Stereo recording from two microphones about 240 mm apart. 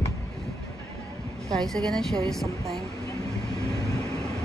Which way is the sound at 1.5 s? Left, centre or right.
Centre.